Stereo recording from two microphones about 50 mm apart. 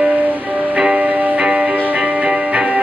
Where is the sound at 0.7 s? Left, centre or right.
Right.